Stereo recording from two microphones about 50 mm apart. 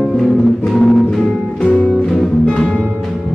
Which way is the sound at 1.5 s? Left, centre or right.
Left.